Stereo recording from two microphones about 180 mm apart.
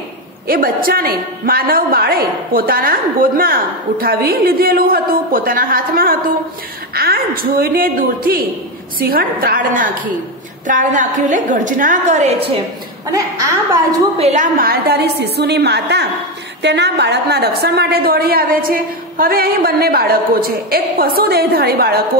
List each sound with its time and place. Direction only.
0.5 s a woman's voice: 55° right (ahead or behind); by 12.4 s 40° right (ahead or behind)
13.0 s a woman's voice: 20° right (ahead or behind)
14.1 s a woman's voice: 40° right (ahead or behind); by 22.0 s 60° right (ahead or behind)